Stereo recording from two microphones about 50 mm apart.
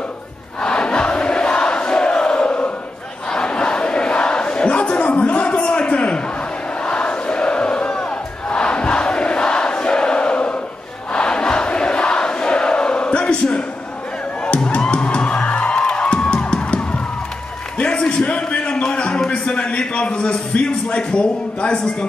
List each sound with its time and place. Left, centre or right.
0.6 s crowd: centre
3.3 s battle cry: centre
6.9 s crowd: left
14.7 s music: left
17.7 s a sound: left